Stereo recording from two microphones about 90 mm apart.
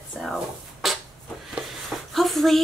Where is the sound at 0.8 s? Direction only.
5° right (ahead or behind).